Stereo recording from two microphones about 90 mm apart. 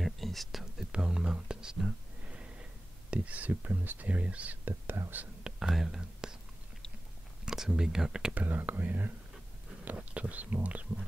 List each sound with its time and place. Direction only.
0.0 s whispering: centre (ahead or behind)
3.1 s speech: 15° right (ahead or behind)
5.4 s whispering: 5° right (ahead or behind)
7.4 s speech: 5° right (ahead or behind)
8.4 s speech: 20° right (ahead or behind)